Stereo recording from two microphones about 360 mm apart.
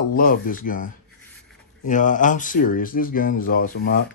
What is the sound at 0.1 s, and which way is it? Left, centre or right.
Speech, left.